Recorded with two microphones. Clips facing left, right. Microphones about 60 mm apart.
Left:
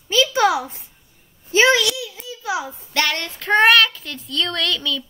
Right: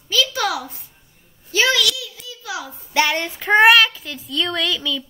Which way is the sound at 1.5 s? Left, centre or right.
Left.